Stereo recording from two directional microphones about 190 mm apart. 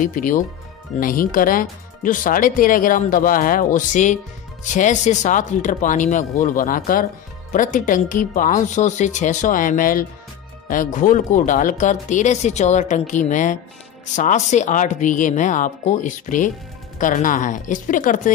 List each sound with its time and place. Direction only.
0.0 s speech: 45° left (ahead or behind)